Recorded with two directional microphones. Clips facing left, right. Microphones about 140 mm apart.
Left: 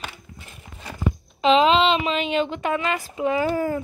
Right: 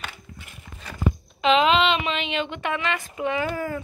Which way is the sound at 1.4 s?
30° left (ahead or behind).